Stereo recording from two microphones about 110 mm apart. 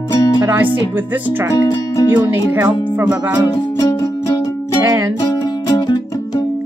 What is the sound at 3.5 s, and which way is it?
Music, 35° left (ahead or behind).